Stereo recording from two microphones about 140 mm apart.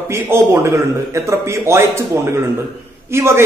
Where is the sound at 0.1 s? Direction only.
20° right (ahead or behind).